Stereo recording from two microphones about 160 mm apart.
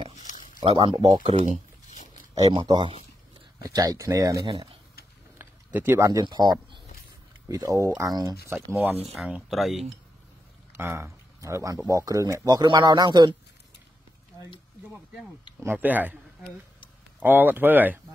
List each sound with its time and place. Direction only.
0.1 s a sound: 50° left (ahead or behind)
0.6 s speech: 30° right (ahead or behind)
1.3 s speech: 45° right (ahead or behind)
2.3 s speech: 25° right (ahead or behind)
5.4 s a sound: 10° right (ahead or behind)
6.2 s speech: 25° right (ahead or behind)
9.1 s speech: centre (ahead or behind)
10.8 s speech: 15° right (ahead or behind)
15.6 s speech: 10° right (ahead or behind)
17.2 s speech: 10° right (ahead or behind)